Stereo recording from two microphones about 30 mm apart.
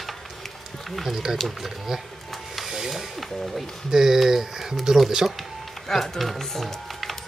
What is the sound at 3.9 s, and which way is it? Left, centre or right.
Speech, centre.